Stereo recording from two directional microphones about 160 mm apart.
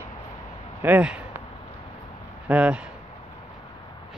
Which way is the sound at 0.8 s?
10° right (ahead or behind).